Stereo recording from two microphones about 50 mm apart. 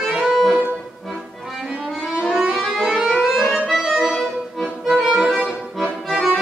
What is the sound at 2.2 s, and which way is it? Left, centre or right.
Music, centre.